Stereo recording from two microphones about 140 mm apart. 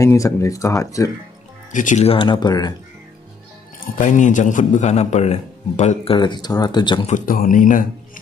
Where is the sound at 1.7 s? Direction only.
60° left (ahead or behind); by 2.7 s 30° left (ahead or behind).